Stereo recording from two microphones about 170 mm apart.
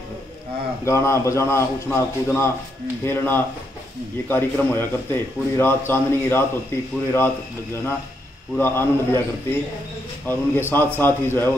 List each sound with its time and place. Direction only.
0.8 s a man's voice: 15° left (ahead or behind)
8.5 s a man's voice: 10° left (ahead or behind)